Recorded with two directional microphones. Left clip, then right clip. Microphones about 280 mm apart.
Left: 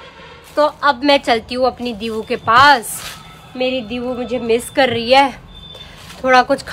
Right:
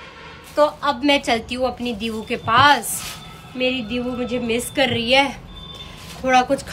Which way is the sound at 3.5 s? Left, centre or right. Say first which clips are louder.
Left 3 dB; centre.